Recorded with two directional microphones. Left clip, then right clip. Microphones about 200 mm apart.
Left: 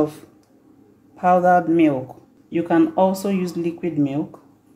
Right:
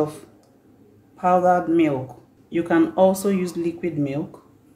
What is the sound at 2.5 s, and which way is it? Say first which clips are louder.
Speech: left 2 dB; 10° left (ahead or behind).